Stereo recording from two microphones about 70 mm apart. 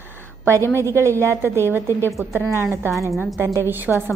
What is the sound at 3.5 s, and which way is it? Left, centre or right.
Speech, right.